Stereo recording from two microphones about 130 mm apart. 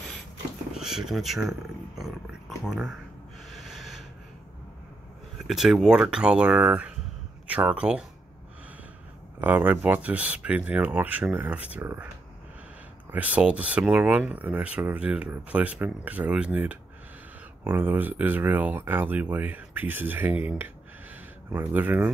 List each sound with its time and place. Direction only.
0.7 s speech: 5° right (ahead or behind)
2.6 s speech: centre (ahead or behind)
3.4 s snort: centre (ahead or behind)
5.5 s speech: 5° right (ahead or behind)
9.4 s speech: 15° right (ahead or behind)
13.1 s speech: 10° right (ahead or behind)